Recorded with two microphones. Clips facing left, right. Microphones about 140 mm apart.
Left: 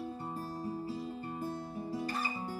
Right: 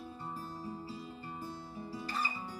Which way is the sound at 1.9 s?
50° left (ahead or behind).